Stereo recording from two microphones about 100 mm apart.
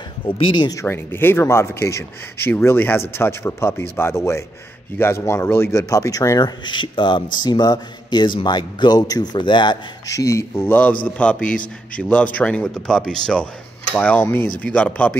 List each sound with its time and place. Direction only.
0.4 s speech: 60° left (ahead or behind)
0.8 s a man's voice: 20° left (ahead or behind)
6.6 s speech: 55° left (ahead or behind)
10.0 s a man's voice: 35° left (ahead or behind); by 15.1 s 15° left (ahead or behind)